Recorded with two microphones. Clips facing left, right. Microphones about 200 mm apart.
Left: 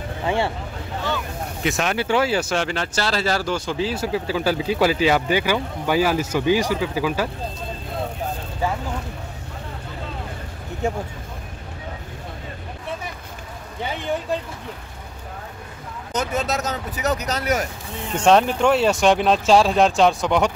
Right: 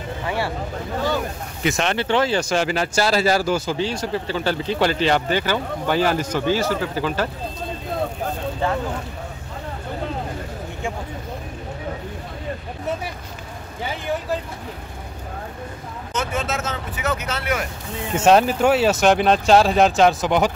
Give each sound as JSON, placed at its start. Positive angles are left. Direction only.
{"t": 1.6, "sound": "speech", "side_deg": 0}
{"t": 16.1, "sound": "speech", "side_deg": 40}
{"t": 18.1, "sound": "speech", "side_deg": -5}